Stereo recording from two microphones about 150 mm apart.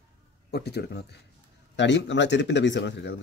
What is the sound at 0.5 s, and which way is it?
Speech, 90° left.